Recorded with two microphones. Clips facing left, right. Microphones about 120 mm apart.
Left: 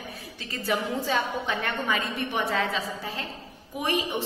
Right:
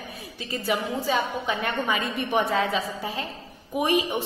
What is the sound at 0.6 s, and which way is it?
A woman's voice, 10° right (ahead or behind).